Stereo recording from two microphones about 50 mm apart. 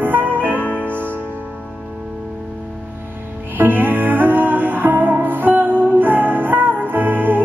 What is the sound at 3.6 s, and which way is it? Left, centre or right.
Music, right.